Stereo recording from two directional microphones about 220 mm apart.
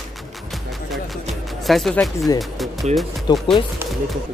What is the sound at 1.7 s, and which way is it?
Speech, centre (ahead or behind).